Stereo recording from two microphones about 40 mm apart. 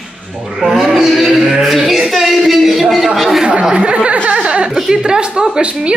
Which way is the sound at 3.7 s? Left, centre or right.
Right.